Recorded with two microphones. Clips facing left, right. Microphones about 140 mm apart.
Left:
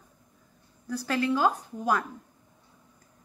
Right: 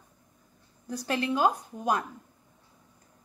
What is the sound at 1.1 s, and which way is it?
Speech, 20° right (ahead or behind).